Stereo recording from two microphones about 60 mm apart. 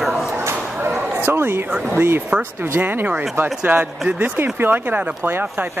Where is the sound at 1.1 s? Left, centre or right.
Right.